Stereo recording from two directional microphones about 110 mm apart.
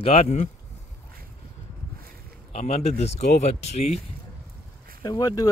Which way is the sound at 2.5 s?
65° left (ahead or behind).